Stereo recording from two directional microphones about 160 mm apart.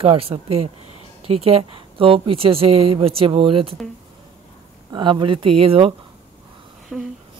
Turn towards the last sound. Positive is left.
turn(degrees=0)  # may be behind; listen again after turning